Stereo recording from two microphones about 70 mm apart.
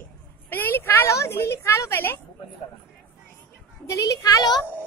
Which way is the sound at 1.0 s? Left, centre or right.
Left.